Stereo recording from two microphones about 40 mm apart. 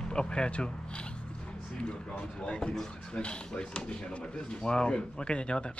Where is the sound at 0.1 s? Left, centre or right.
Left.